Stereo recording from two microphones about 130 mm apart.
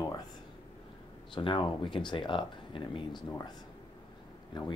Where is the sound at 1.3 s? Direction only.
40° left (ahead or behind).